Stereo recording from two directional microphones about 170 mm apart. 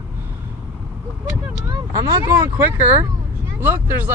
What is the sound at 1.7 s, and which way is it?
Speech, 20° right (ahead or behind).